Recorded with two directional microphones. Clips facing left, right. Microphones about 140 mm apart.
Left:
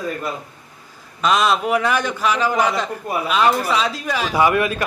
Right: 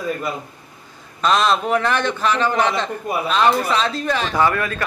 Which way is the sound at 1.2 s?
5° left (ahead or behind).